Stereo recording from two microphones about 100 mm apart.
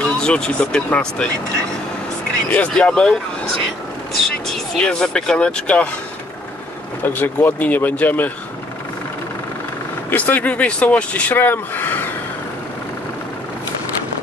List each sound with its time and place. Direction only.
0.0 s speech: 10° left (ahead or behind)
2.5 s speech: 10° left (ahead or behind)
4.5 s speech: 5° left (ahead or behind)
7.0 s speech: 15° left (ahead or behind)
10.0 s speech: 15° left (ahead or behind)